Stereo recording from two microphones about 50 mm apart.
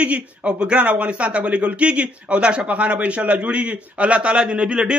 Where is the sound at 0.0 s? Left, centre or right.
Right.